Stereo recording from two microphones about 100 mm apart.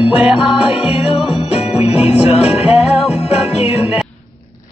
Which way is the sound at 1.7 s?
85° left.